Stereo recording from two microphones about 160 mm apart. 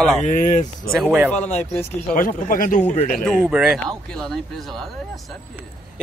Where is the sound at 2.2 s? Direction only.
60° left (ahead or behind).